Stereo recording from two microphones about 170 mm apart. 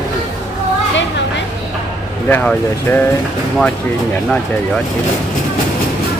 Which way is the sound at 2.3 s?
10° left (ahead or behind).